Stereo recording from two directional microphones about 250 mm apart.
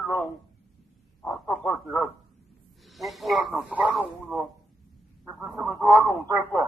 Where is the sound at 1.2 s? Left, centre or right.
Centre.